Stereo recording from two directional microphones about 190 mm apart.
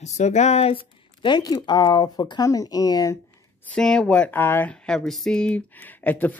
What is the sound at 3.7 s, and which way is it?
Speech, 5° left (ahead or behind).